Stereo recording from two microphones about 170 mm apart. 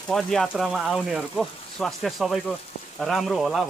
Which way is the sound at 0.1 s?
5° left (ahead or behind).